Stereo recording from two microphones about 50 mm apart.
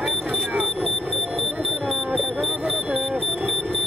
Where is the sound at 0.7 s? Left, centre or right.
Centre.